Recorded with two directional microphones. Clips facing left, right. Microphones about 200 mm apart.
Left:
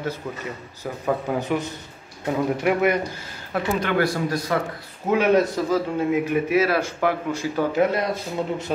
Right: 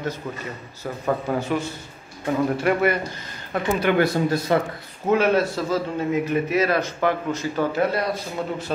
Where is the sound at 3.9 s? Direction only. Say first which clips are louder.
Right 2 dB; 25° right (ahead or behind).